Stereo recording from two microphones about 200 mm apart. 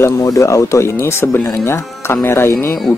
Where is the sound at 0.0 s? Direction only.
15° left (ahead or behind).